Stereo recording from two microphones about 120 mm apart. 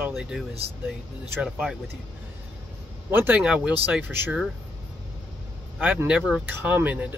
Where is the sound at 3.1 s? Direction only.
15° right (ahead or behind).